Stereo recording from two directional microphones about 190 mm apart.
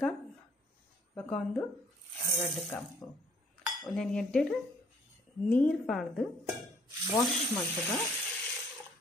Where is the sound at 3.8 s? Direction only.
Centre (ahead or behind).